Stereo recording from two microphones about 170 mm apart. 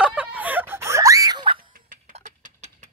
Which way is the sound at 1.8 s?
50° right (ahead or behind).